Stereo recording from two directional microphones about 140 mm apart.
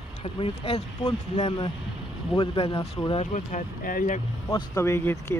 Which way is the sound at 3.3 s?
80° left.